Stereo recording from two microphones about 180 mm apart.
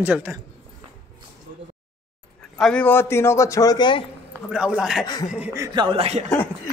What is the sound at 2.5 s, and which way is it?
A man's voice, 5° left (ahead or behind).